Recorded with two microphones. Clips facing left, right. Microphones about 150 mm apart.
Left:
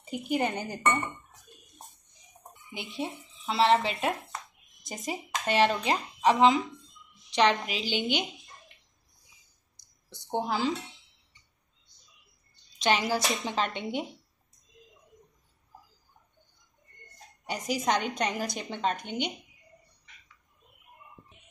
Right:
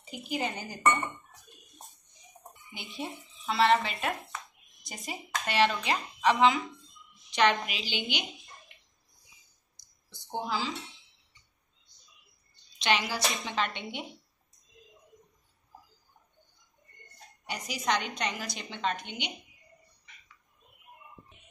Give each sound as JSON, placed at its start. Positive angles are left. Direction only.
{"t": 0.3, "sound": "speech", "side_deg": 60}
{"t": 2.7, "sound": "a woman's voice", "side_deg": 25}
{"t": 5.5, "sound": "a woman's voice", "side_deg": 40}
{"t": 10.0, "sound": "a woman's voice", "side_deg": 60}
{"t": 12.8, "sound": "a woman's voice", "side_deg": 45}
{"t": 17.5, "sound": "a woman's voice", "side_deg": 45}